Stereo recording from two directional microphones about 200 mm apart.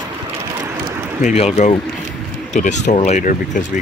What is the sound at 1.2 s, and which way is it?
Speech, 30° left (ahead or behind).